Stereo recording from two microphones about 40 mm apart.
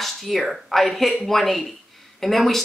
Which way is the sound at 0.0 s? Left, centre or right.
Centre.